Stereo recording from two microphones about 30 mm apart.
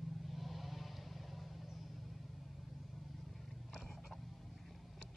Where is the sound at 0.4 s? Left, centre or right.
Centre.